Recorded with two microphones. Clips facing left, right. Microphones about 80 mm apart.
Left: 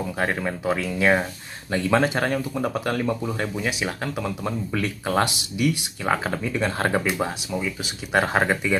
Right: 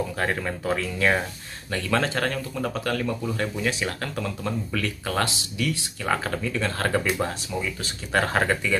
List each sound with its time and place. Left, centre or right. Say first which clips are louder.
0.2 s speech: left 5 dB; centre